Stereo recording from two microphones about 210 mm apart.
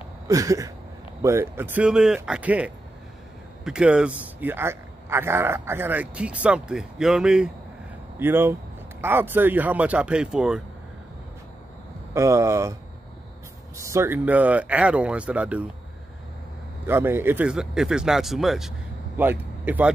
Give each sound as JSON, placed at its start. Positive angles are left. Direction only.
{"t": 0.3, "sound": "a man's voice", "side_deg": -15}
{"t": 12.1, "sound": "speech", "side_deg": -15}
{"t": 13.7, "sound": "speech", "side_deg": -15}
{"t": 16.8, "sound": "a man's voice", "side_deg": -10}